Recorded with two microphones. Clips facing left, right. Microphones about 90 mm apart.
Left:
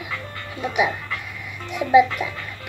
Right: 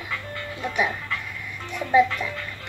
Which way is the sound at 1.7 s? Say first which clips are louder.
Left 4 dB; 10° left (ahead or behind).